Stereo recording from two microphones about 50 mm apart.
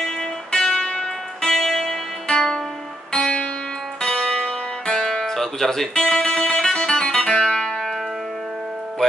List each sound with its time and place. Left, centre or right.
0.2 s music: centre